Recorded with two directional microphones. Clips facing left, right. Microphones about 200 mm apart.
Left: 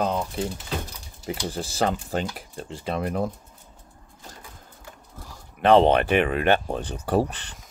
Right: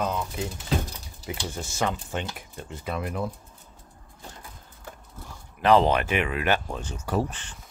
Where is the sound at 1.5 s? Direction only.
35° left (ahead or behind).